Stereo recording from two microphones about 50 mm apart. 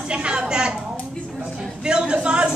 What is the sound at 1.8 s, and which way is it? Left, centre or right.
Speech, centre.